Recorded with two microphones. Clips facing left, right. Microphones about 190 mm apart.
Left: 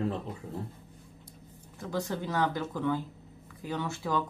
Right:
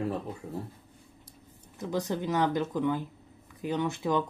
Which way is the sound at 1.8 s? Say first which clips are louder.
Right 2 dB; 20° right (ahead or behind).